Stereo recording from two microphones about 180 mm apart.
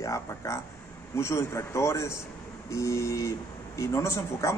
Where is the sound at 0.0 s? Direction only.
15° left (ahead or behind).